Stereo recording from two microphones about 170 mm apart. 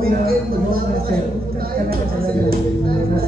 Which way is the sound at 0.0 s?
60° right (ahead or behind).